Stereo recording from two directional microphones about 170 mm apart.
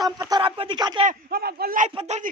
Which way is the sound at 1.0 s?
60° right (ahead or behind).